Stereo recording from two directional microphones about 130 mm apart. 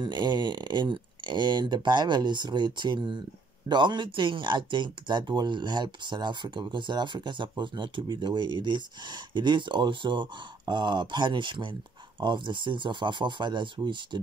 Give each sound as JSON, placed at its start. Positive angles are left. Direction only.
{"t": 0.0, "sound": "speech", "side_deg": -35}